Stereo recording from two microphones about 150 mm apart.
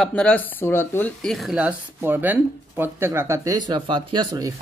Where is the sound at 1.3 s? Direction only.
5° right (ahead or behind).